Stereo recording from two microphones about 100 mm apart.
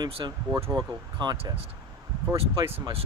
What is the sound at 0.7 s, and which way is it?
Speech, 50° right (ahead or behind).